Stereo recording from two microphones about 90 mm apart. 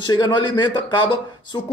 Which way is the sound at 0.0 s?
55° left (ahead or behind).